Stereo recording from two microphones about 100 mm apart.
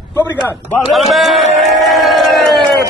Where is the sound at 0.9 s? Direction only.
Centre (ahead or behind).